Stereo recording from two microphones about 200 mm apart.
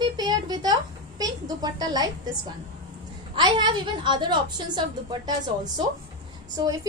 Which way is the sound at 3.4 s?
20° right (ahead or behind).